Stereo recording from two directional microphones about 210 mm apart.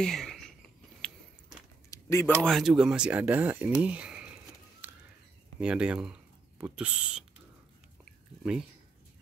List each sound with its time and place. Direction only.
0.0 s patter: centre (ahead or behind)
1.9 s a sound: 15° left (ahead or behind)
2.4 s speech: centre (ahead or behind)
4.8 s bird: 10° right (ahead or behind)
5.6 s speech: 5° right (ahead or behind)
8.0 s chewing: 5° right (ahead or behind)